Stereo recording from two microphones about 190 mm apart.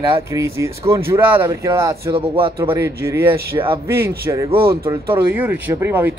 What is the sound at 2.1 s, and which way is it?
Speech, 30° right (ahead or behind).